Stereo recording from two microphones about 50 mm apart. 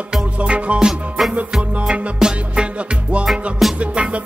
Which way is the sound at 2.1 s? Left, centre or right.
Centre.